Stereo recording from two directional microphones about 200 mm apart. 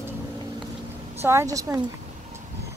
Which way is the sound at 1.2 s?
15° right (ahead or behind).